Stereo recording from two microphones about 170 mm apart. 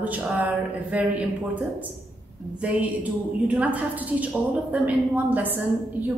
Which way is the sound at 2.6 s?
10° right (ahead or behind).